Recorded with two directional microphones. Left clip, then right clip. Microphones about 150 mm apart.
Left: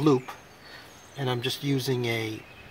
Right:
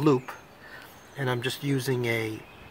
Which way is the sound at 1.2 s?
15° left (ahead or behind).